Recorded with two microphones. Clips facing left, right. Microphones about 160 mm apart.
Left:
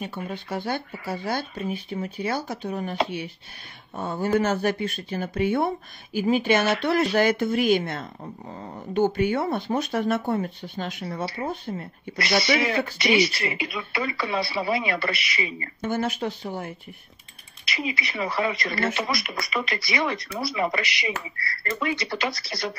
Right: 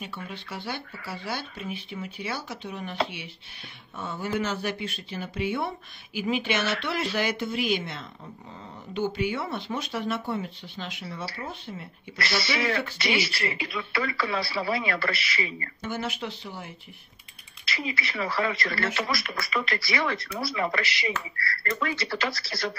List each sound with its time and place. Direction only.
0.3 s speech: 45° left (ahead or behind)
12.2 s speech: 20° left (ahead or behind)
15.8 s speech: 50° left (ahead or behind)
17.6 s speech: 20° left (ahead or behind)